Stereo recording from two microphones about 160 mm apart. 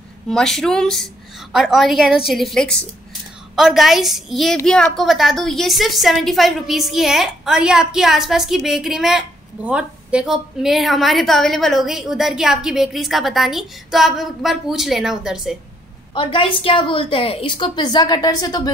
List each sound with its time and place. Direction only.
0.3 s a woman's voice: 5° left (ahead or behind)
16.2 s a woman's voice: 30° left (ahead or behind)